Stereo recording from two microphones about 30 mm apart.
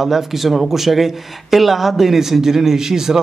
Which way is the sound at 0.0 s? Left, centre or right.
Centre.